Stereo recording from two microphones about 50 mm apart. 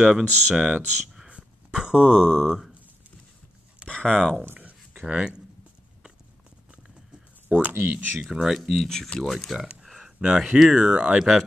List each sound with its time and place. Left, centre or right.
0.0 s speech: centre
1.0 s a sound: centre
2.0 s speech: centre
3.9 s speech: centre
4.6 s a sound: right
7.4 s speech: right
8.3 s speech: centre
8.7 s speech: centre
9.6 s speech: centre